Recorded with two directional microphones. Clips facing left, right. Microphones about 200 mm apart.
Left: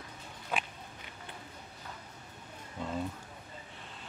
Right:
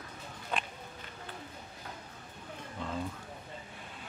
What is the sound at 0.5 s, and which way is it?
Walk, 5° left (ahead or behind).